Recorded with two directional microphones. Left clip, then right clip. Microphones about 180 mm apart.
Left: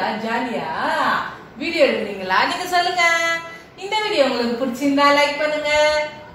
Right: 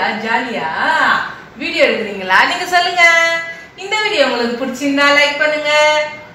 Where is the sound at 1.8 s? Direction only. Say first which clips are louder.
Right 4 dB; 10° right (ahead or behind).